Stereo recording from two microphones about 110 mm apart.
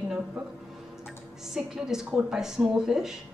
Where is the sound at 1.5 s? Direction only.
5° right (ahead or behind).